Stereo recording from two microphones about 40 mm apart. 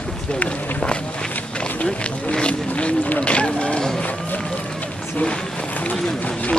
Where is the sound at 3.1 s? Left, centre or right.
Left.